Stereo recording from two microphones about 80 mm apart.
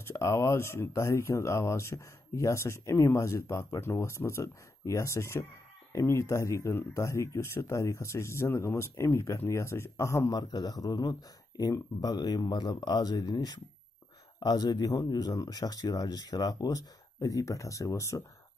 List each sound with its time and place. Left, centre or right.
0.1 s speech: left
10.3 s speech: left